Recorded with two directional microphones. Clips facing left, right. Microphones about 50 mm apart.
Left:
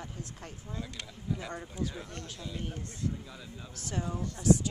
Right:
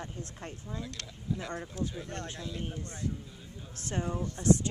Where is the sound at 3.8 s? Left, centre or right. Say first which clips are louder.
Right 2 dB; right.